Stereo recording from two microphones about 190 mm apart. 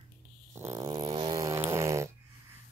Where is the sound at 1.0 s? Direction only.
30° right (ahead or behind).